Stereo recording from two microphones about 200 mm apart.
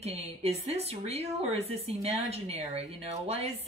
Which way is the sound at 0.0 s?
30° right (ahead or behind).